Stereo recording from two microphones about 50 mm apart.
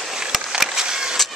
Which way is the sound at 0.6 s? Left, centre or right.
Centre.